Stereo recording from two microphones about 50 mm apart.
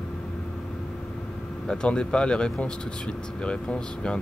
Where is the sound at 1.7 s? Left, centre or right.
Centre.